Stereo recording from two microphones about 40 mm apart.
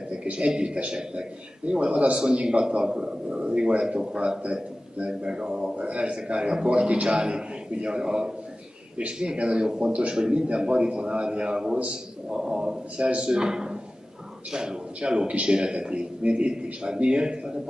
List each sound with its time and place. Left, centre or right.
0.3 s a man's voice: right
8.9 s a man's voice: right